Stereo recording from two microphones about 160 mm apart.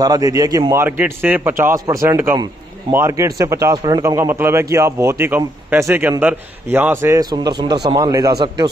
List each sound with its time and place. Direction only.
0.0 s a man's voice: 25° right (ahead or behind)